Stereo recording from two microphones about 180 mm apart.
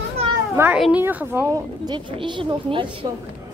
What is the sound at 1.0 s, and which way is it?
Speech, 10° right (ahead or behind).